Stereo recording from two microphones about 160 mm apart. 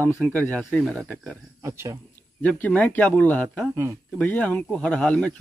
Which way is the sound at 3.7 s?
20° right (ahead or behind).